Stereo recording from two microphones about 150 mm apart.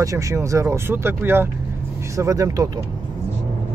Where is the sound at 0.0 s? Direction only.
20° right (ahead or behind).